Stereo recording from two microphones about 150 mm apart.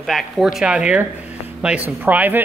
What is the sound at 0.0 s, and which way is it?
Speech, centre (ahead or behind).